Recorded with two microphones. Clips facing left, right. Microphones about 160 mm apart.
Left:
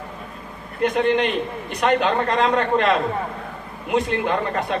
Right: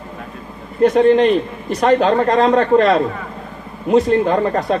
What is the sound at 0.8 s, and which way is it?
Speech, 35° right (ahead or behind).